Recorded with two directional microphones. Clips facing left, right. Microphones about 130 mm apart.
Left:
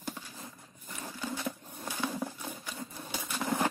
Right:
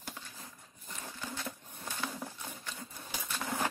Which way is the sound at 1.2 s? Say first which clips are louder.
Left 6 dB; 15° left (ahead or behind).